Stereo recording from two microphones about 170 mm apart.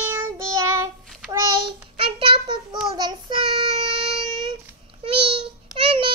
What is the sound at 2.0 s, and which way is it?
Child singing, 30° right (ahead or behind).